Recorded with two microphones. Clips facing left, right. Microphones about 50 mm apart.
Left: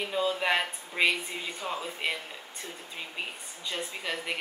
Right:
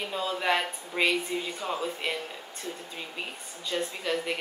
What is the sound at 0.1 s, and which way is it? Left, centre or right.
Speech, centre.